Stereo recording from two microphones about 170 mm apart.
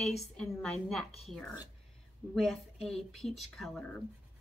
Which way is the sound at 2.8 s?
Centre (ahead or behind).